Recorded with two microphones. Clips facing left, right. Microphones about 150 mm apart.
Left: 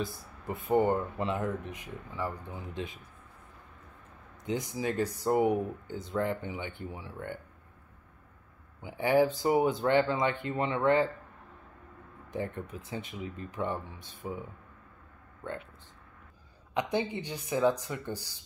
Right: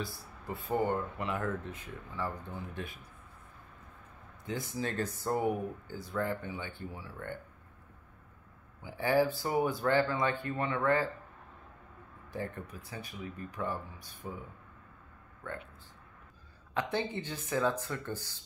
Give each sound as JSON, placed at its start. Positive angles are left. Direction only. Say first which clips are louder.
{"t": 0.0, "sound": "speech", "louder": "left 4 dB", "side_deg": 20}
{"t": 4.5, "sound": "speech", "louder": "left 4 dB", "side_deg": 15}
{"t": 8.8, "sound": "speech", "louder": "left 3 dB", "side_deg": 20}
{"t": 12.3, "sound": "speech", "louder": "left 4 dB", "side_deg": 20}
{"t": 15.4, "sound": "speech", "louder": "left 3 dB", "side_deg": 25}
{"t": 16.7, "sound": "speech", "louder": "left 3 dB", "side_deg": 15}